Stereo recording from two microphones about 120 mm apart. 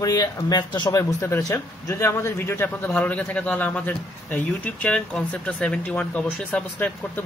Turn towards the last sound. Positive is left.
turn(degrees=15)  # may be behind; listen again after turning